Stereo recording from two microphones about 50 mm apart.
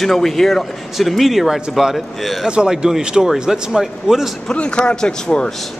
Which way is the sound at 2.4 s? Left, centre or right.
Centre.